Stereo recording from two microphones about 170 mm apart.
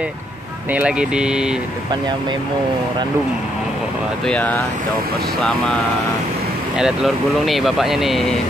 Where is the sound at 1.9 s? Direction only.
25° right (ahead or behind).